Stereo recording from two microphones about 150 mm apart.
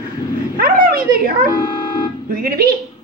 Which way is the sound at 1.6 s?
30° left (ahead or behind).